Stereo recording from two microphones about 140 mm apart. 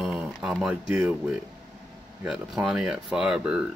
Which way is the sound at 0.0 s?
5° right (ahead or behind).